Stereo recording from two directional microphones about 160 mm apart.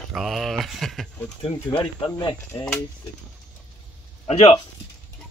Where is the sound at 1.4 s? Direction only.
35° left (ahead or behind).